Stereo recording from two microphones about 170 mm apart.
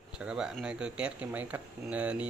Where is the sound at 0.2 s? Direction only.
5° right (ahead or behind).